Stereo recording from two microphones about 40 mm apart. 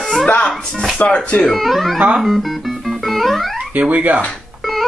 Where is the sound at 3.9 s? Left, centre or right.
Right.